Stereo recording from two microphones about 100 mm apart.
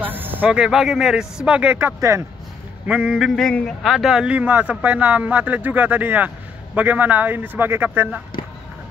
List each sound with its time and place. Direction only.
0.0 s a sound: 20° right (ahead or behind)
0.5 s a man's voice: 5° right (ahead or behind)
2.0 s speech: 30° right (ahead or behind)
2.9 s a man's voice: 10° right (ahead or behind)